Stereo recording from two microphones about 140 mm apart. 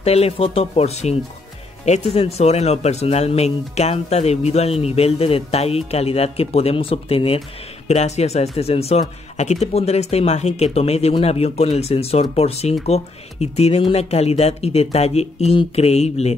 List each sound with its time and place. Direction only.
0.0 s speech: 45° left (ahead or behind)
2.1 s speech: 45° left (ahead or behind)